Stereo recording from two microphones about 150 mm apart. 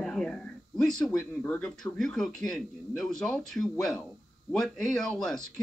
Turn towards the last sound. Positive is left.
turn(degrees=5)  # may be behind; listen again after turning